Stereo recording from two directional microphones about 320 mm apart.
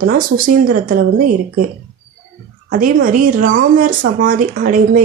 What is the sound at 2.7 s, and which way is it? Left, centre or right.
A woman's voice, right.